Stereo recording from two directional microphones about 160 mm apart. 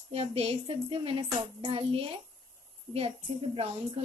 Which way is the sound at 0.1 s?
35° right (ahead or behind).